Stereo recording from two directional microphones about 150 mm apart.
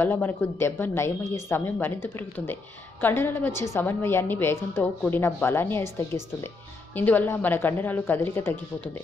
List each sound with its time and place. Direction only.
0.0 s a woman's voice: 15° left (ahead or behind)